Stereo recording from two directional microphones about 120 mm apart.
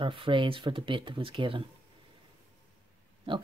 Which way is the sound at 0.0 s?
45° right (ahead or behind).